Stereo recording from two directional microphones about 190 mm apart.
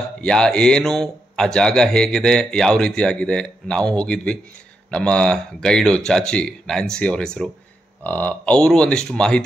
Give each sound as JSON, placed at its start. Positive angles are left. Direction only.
{"t": 0.2, "sound": "speech", "side_deg": 5}